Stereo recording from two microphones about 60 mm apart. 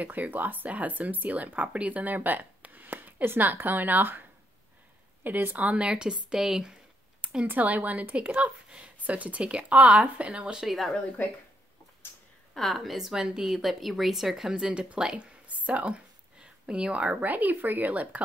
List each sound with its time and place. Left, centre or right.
0.0 s speech: right; by 7.4 s centre
7.4 s speech: right
10.7 s speech: centre
12.5 s speech: centre; by 18.2 s right